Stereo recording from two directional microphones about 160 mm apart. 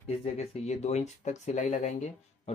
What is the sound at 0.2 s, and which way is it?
Speech, 45° left (ahead or behind).